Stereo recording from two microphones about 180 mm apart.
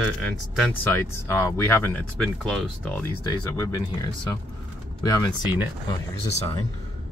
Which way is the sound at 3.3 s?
20° left (ahead or behind).